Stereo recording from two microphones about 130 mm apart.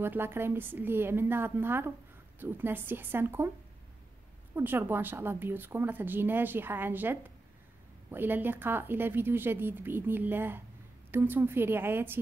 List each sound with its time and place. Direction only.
0.0 s a woman's voice: 15° right (ahead or behind)
4.6 s a woman's voice: 15° right (ahead or behind)